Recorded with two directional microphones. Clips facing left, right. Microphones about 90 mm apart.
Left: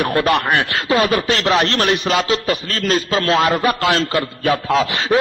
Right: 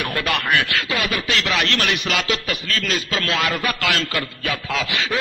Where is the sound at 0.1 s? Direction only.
35° left (ahead or behind).